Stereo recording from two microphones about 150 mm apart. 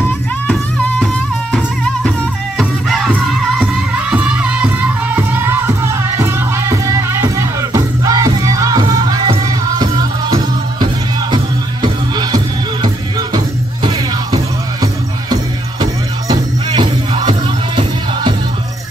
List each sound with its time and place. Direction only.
2.0 s music: centre (ahead or behind); by 12.4 s 30° right (ahead or behind)
13.8 s music: 25° right (ahead or behind)